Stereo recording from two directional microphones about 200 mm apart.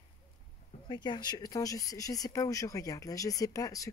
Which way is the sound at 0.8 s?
20° left (ahead or behind).